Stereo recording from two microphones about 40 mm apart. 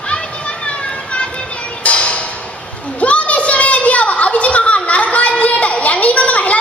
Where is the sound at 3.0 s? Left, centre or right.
Left.